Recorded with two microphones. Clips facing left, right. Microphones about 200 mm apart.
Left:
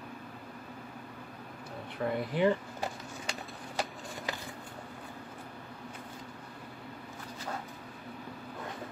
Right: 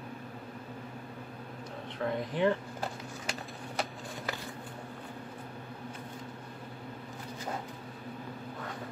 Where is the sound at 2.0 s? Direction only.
10° left (ahead or behind).